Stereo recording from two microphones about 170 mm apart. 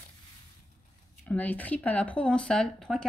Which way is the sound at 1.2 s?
10° left (ahead or behind).